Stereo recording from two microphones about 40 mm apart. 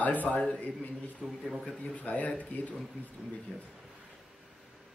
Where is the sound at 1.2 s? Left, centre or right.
Centre.